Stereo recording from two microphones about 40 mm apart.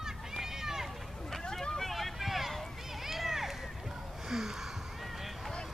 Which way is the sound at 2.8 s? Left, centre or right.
Centre.